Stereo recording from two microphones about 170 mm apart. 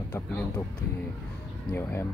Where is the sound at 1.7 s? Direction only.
15° left (ahead or behind).